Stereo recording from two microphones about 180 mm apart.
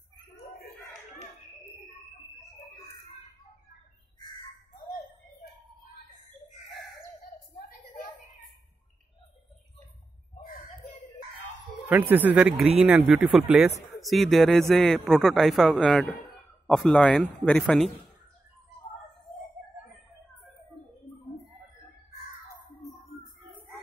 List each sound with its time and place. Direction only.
10.4 s a sound: 50° left (ahead or behind)
11.9 s a man's voice: 10° right (ahead or behind)
19.3 s chicken: centre (ahead or behind)